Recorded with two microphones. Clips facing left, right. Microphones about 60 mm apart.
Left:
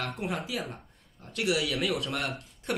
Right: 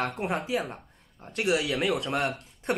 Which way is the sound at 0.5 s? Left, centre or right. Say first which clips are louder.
Right 5 dB; centre.